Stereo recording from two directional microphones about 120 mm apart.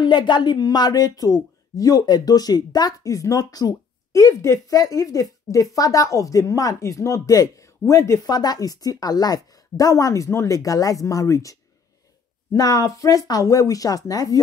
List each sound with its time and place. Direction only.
0.0 s speech: 40° left (ahead or behind)
12.5 s speech: 30° left (ahead or behind)